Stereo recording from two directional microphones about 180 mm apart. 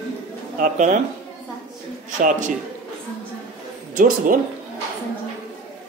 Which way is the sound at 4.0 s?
50° right (ahead or behind).